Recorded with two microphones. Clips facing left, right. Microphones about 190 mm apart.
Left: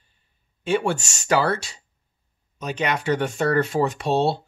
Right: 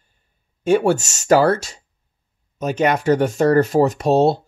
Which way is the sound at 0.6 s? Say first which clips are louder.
Right 7 dB; 45° right (ahead or behind).